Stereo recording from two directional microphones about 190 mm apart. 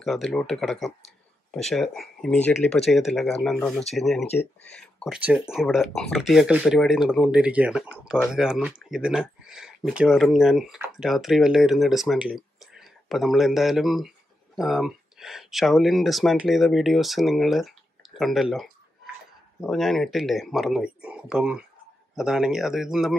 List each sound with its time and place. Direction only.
0.0 s speech: centre (ahead or behind)